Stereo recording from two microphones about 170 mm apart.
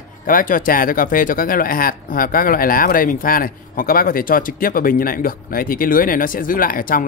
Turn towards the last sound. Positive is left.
turn(degrees=55)  # may be behind; listen again after turning